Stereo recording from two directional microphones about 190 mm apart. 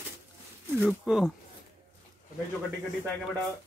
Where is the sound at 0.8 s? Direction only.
5° right (ahead or behind).